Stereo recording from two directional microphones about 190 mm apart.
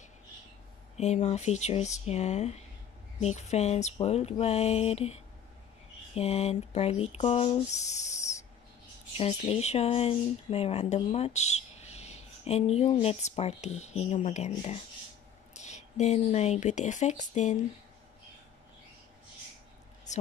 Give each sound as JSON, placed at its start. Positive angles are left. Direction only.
{"t": 0.9, "sound": "speech", "side_deg": 35}
{"t": 9.1, "sound": "speech", "side_deg": 35}